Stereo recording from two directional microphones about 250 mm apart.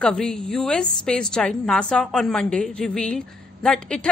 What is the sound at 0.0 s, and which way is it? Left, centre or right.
A woman's voice, centre.